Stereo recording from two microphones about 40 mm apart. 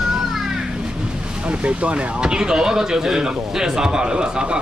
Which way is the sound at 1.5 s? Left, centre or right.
Right.